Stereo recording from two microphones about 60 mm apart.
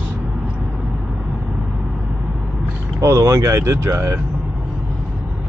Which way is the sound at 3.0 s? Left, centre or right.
Right.